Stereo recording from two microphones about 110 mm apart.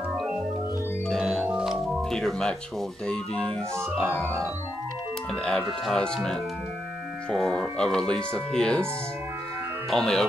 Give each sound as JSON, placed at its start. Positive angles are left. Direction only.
{"t": 1.0, "sound": "organ", "side_deg": 0}
{"t": 1.4, "sound": "music", "side_deg": -10}
{"t": 3.1, "sound": "speech", "side_deg": 10}
{"t": 5.3, "sound": "speech", "side_deg": 10}
{"t": 9.8, "sound": "speech", "side_deg": 5}